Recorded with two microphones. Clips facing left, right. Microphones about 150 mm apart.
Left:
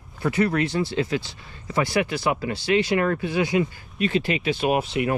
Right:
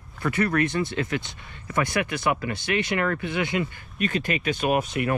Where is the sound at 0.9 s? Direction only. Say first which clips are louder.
Left 3 dB; 25° left (ahead or behind).